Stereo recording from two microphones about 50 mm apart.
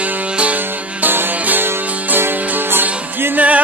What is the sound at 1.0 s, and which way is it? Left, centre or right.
Music, right.